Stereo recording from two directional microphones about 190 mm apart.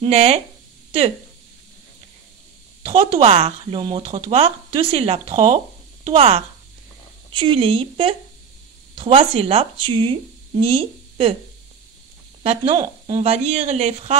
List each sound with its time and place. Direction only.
0.0 s speech: 30° right (ahead or behind)
2.8 s speech: 30° right (ahead or behind)
12.4 s speech: 25° right (ahead or behind)